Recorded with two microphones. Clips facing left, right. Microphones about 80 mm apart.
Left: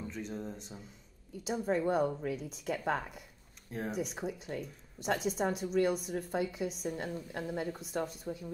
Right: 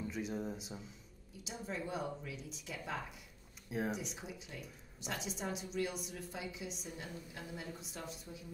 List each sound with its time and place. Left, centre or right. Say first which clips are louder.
0.1 s speech: even; centre
1.4 s speech: left 11 dB; left
3.7 s speech: left 2 dB; centre
4.1 s speech: left 10 dB; left